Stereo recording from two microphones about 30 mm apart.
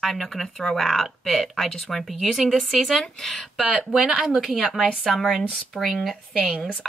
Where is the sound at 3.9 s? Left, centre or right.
Centre.